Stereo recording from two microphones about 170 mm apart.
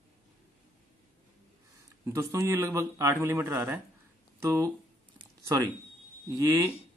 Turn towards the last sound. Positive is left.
turn(degrees=-20)  # may be behind; listen again after turning